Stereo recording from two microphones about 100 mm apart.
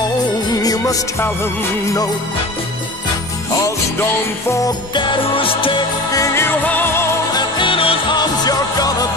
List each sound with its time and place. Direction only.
0.5 s music: 40° left (ahead or behind)
3.5 s music: 30° left (ahead or behind)
4.9 s music: 55° left (ahead or behind)
6.1 s music: 30° left (ahead or behind)
7.3 s music: 55° left (ahead or behind)
8.2 s music: 40° left (ahead or behind)